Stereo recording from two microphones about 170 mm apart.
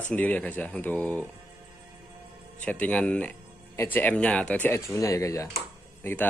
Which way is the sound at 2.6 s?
10° left (ahead or behind).